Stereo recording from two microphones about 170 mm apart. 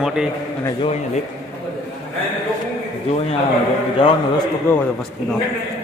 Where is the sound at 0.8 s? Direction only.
40° left (ahead or behind).